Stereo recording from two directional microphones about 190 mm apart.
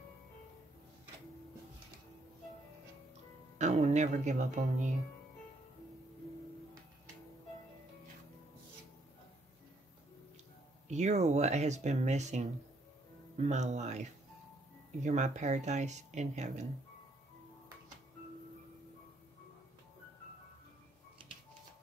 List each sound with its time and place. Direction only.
3.5 s speech: 35° right (ahead or behind)
10.9 s speech: 35° right (ahead or behind)
15.0 s speech: 40° right (ahead or behind)